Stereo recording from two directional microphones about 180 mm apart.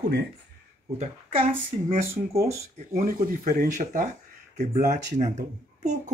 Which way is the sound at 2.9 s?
50° right (ahead or behind).